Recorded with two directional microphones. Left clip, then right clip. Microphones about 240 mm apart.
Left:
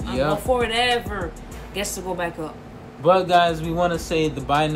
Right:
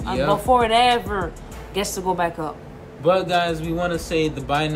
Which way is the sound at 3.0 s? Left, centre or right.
Centre.